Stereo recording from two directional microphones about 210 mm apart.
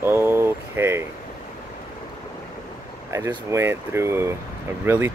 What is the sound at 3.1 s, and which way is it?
Speech, 10° right (ahead or behind).